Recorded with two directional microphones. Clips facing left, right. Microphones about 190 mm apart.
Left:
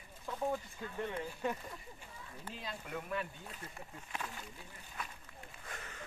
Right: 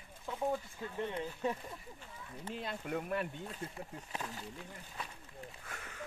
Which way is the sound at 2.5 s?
55° right (ahead or behind).